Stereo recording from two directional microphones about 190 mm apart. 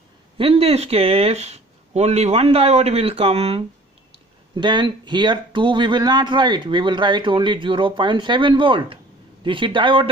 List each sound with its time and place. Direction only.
0.4 s speech: 30° right (ahead or behind)